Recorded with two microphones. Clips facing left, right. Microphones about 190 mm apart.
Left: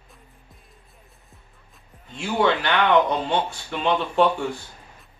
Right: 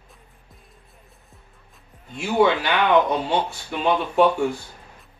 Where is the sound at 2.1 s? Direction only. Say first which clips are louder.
Right 3 dB; 10° right (ahead or behind).